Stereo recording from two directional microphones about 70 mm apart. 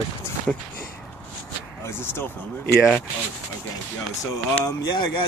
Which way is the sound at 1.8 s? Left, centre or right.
Left.